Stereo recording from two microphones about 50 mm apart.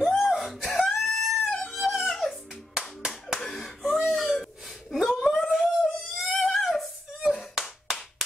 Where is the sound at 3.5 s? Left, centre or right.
Centre.